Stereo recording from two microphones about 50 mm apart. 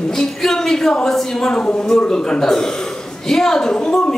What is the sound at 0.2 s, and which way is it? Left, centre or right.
A woman's voice, centre.